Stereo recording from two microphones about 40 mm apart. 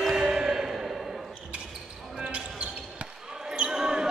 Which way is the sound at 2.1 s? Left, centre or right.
Right.